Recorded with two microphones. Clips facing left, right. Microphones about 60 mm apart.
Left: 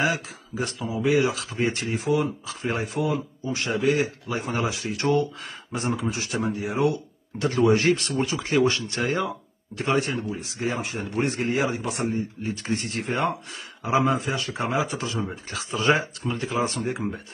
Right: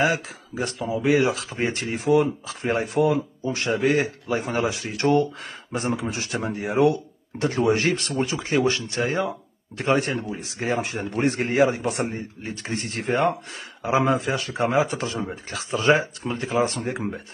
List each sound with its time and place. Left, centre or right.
0.0 s a man's voice: right
9.8 s a man's voice: right